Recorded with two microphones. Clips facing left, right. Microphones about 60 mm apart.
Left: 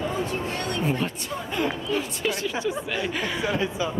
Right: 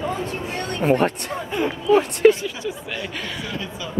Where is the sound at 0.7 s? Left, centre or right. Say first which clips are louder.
Right 10 dB; right.